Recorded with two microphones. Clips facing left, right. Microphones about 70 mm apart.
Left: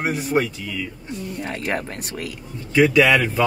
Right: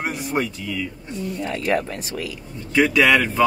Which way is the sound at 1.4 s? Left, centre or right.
Left.